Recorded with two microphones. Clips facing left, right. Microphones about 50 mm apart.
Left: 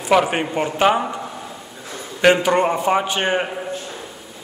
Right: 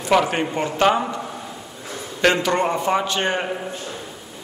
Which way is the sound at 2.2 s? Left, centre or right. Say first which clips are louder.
Left 3 dB; centre.